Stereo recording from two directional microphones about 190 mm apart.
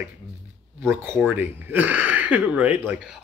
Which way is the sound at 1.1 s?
10° right (ahead or behind).